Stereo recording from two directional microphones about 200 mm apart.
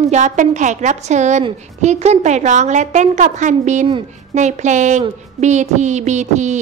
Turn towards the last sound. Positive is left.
turn(degrees=-35)  # may be behind; listen again after turning